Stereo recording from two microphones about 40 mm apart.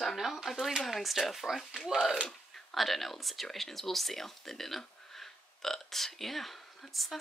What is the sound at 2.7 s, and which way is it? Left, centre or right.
Speech, centre.